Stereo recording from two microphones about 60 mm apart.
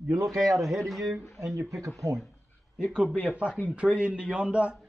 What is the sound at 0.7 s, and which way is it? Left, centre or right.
Speech, centre.